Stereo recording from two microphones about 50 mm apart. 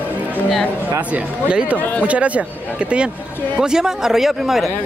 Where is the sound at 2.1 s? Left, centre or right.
Right.